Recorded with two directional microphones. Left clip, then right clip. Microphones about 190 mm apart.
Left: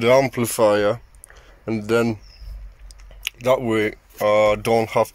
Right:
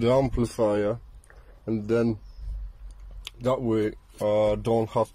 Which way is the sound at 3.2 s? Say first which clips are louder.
Left 7 dB; 5° right (ahead or behind).